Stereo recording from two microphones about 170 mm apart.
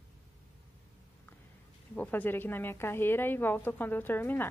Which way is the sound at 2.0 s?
10° left (ahead or behind).